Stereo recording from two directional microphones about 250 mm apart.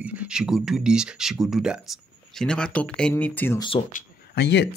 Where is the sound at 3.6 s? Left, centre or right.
Left.